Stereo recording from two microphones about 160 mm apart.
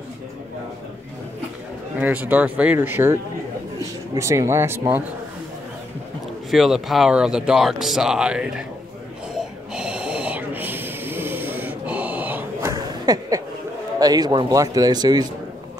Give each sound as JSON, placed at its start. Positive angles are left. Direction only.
{"t": 2.0, "sound": "speech", "side_deg": -10}
{"t": 6.5, "sound": "speech", "side_deg": 0}
{"t": 9.3, "sound": "gasp", "side_deg": -5}
{"t": 12.7, "sound": "a sound", "side_deg": -25}
{"t": 13.9, "sound": "speech", "side_deg": -25}